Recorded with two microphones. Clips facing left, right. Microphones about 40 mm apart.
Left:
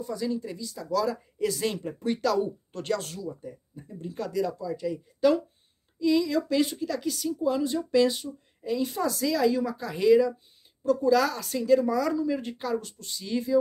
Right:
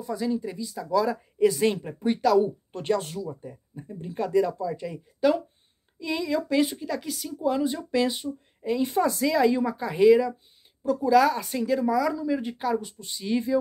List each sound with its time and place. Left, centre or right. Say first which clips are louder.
0.1 s speech: right 4 dB; centre
3.2 s speech: right 2 dB; right